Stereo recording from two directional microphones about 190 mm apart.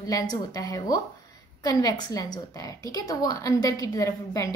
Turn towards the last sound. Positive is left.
turn(degrees=15)  # may be behind; listen again after turning